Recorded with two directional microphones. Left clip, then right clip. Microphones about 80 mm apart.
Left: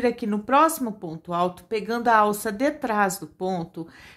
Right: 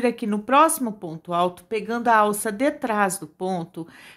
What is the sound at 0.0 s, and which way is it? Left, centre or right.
Speech, right.